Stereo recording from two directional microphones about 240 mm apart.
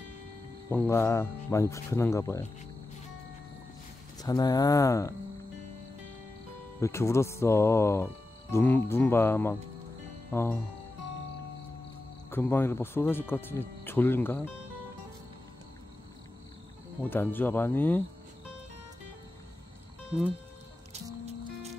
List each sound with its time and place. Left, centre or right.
0.7 s speech: centre
4.2 s speech: centre
6.8 s speech: centre
12.3 s speech: centre
17.0 s speech: centre